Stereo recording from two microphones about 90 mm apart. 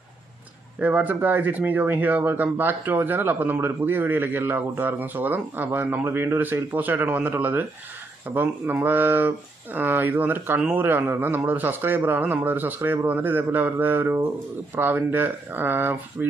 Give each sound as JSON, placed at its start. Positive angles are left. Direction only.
{"t": 0.7, "sound": "speech", "side_deg": -15}